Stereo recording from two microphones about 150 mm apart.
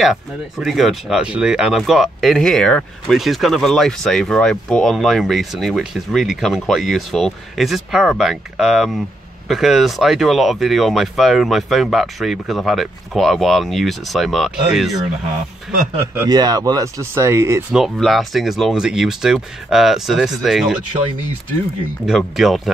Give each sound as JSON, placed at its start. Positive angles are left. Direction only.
{"t": 0.0, "sound": "speech", "side_deg": 0}
{"t": 16.3, "sound": "speech", "side_deg": -25}
{"t": 17.7, "sound": "speech", "side_deg": 0}
{"t": 22.0, "sound": "speech", "side_deg": 0}